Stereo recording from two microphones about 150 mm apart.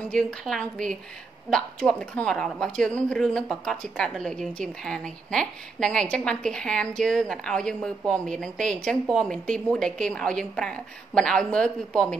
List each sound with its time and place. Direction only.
0.1 s speech: 5° left (ahead or behind)